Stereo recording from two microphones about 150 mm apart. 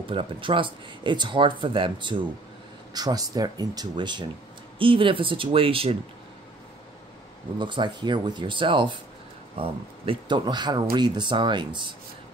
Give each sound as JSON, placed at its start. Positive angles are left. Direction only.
{"t": 0.0, "sound": "speech", "side_deg": -35}
{"t": 7.5, "sound": "speech", "side_deg": -30}